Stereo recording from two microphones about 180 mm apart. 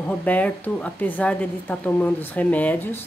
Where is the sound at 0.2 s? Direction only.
10° left (ahead or behind).